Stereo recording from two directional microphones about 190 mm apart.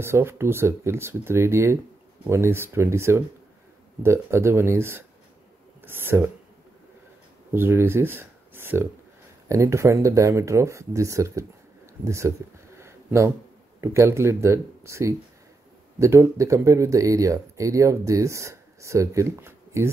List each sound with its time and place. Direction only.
0.0 s speech: 15° right (ahead or behind)
7.5 s speech: 10° right (ahead or behind)
12.0 s a sound: 15° right (ahead or behind)
13.7 s speech: 15° right (ahead or behind)